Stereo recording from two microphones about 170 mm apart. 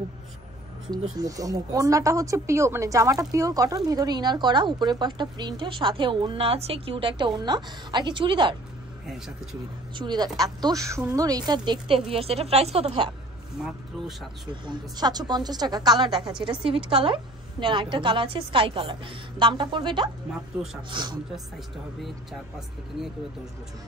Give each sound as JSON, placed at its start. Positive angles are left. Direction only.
{"t": 1.1, "sound": "speech", "side_deg": -20}
{"t": 9.9, "sound": "speech", "side_deg": -25}
{"t": 13.6, "sound": "speech", "side_deg": 0}
{"t": 14.5, "sound": "speech", "side_deg": -25}